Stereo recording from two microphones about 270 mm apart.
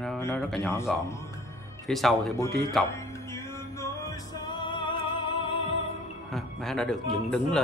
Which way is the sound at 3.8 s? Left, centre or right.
Centre.